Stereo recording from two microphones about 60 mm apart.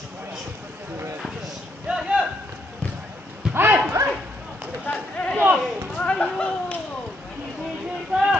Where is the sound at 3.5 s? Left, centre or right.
Right.